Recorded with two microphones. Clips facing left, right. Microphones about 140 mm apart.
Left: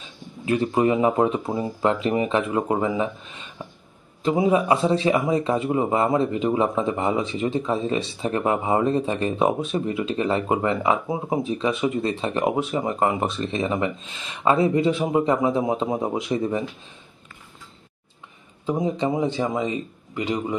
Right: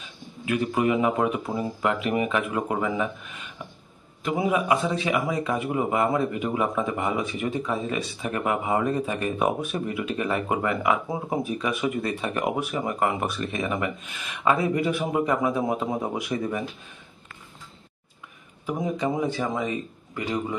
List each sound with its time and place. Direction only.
0.5 s a man's voice: 30° left (ahead or behind)
18.7 s speech: 20° left (ahead or behind)